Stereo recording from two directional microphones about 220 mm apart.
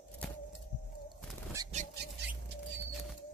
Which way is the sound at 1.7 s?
30° right (ahead or behind).